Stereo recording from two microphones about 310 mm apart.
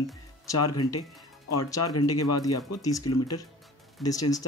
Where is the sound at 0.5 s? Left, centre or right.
Left.